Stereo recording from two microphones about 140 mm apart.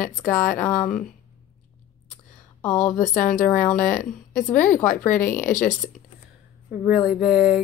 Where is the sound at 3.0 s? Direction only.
70° left (ahead or behind).